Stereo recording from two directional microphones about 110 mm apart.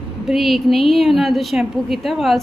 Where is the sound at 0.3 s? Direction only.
Centre (ahead or behind).